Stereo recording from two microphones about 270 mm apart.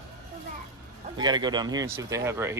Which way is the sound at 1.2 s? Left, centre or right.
Centre.